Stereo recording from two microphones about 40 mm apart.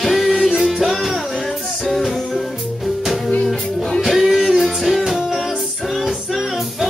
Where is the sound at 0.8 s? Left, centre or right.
Centre.